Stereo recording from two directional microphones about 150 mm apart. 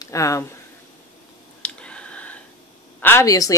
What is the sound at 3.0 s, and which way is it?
Speech, 20° left (ahead or behind).